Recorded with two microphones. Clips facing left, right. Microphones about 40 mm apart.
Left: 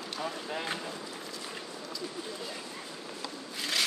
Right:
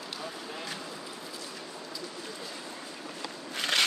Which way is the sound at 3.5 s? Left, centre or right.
Right.